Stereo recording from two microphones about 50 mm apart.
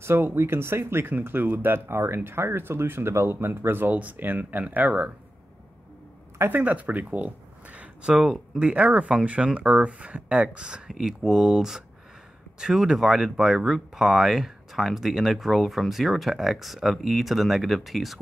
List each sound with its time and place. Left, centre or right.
0.0 s speech: right
1.1 s speech: right
1.9 s speech: right
6.5 s speech: right
8.1 s speech: centre
8.5 s speech: right
10.9 s speech: centre